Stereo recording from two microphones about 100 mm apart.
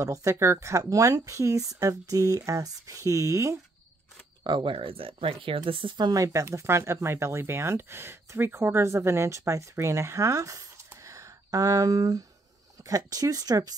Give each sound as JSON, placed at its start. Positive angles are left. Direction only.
{"t": 0.0, "sound": "speech", "side_deg": -30}
{"t": 4.4, "sound": "speech", "side_deg": -55}
{"t": 11.0, "sound": "a sound", "side_deg": -35}
{"t": 12.8, "sound": "speech", "side_deg": -35}